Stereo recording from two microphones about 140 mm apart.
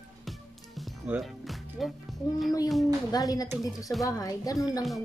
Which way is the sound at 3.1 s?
25° left (ahead or behind).